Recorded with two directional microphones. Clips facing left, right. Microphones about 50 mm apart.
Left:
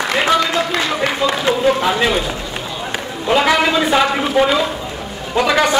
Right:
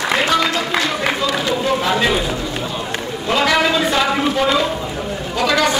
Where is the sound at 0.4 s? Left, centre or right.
Centre.